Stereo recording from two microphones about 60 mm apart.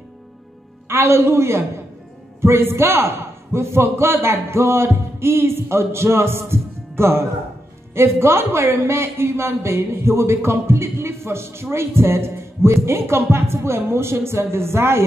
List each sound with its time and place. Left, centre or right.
0.8 s a man's voice: right